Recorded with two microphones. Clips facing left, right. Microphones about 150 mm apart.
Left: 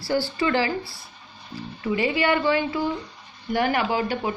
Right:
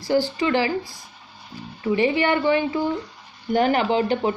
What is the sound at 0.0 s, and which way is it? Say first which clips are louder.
Speech: right 3 dB; 15° right (ahead or behind).